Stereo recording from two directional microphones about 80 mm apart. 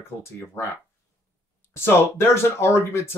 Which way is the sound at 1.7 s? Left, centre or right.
Left.